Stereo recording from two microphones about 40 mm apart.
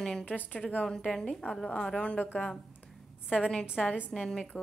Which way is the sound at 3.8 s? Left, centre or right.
Centre.